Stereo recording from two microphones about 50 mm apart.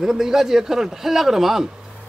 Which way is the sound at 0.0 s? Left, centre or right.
Centre.